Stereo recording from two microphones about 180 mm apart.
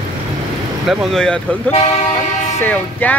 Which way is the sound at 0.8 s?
5° left (ahead or behind).